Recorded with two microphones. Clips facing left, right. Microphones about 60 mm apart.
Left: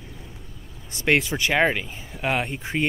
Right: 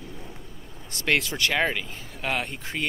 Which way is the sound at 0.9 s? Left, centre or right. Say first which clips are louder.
Left 4 dB; centre.